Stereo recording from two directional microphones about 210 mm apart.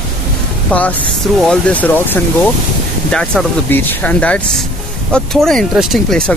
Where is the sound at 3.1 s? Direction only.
5° left (ahead or behind).